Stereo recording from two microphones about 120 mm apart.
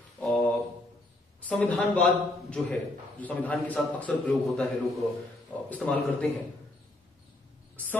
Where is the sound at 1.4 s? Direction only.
10° left (ahead or behind).